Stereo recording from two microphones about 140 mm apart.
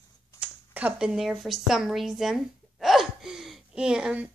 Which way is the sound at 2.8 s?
Centre (ahead or behind).